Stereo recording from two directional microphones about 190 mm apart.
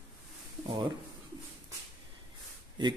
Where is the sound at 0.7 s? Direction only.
20° right (ahead or behind).